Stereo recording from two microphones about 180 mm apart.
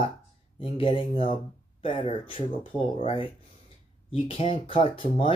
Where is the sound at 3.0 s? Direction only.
30° left (ahead or behind).